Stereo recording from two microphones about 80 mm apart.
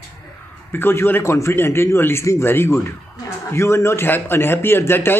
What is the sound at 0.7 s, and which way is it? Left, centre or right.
A man's voice, left.